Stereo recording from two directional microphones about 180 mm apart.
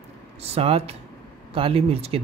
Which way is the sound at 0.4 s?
35° right (ahead or behind).